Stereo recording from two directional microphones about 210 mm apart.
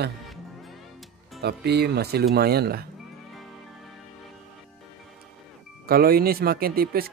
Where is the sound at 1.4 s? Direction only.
50° right (ahead or behind).